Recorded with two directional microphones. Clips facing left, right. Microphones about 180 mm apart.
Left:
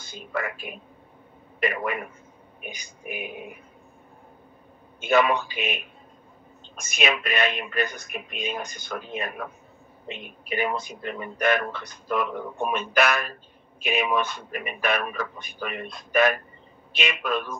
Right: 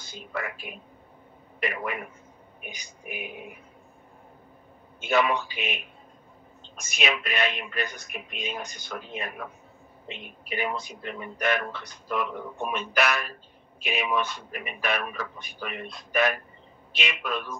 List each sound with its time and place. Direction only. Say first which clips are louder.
0.0 s speech: left 3 dB; 50° left (ahead or behind)
5.0 s speech: left 3 dB; 50° left (ahead or behind)
6.9 s speech: left 3 dB; 50° left (ahead or behind)